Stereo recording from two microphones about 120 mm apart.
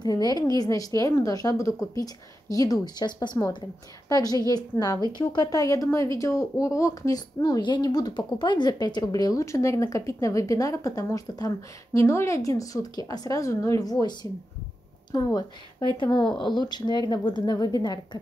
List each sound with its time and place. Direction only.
0.0 s a woman's voice: 35° left (ahead or behind)